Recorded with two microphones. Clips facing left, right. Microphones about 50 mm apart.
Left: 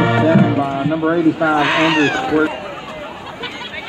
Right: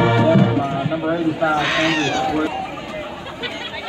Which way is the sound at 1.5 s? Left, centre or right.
Left.